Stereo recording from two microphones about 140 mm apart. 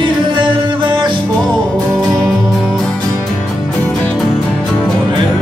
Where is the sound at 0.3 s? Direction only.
35° right (ahead or behind).